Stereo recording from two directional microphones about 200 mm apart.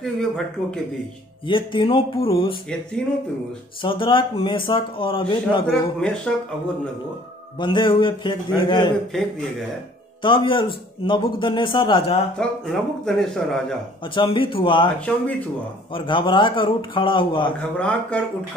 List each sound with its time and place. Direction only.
0.0 s speech: centre (ahead or behind)
1.5 s a man's voice: 25° left (ahead or behind)
3.8 s a man's voice: 25° left (ahead or behind)
5.7 s speech: 5° left (ahead or behind)
7.5 s a man's voice: 25° left (ahead or behind)
10.2 s a man's voice: 25° left (ahead or behind)
12.4 s speech: 5° left (ahead or behind)
14.1 s a man's voice: 25° left (ahead or behind)
15.0 s speech: 5° left (ahead or behind)
15.9 s a man's voice: 25° left (ahead or behind)
17.6 s speech: 5° left (ahead or behind)